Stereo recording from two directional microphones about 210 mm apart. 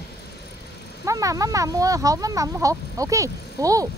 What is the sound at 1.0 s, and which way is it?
Speech, 15° right (ahead or behind).